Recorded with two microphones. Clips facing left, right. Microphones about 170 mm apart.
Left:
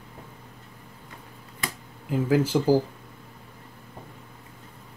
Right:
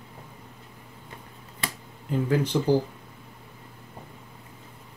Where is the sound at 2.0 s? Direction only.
5° left (ahead or behind).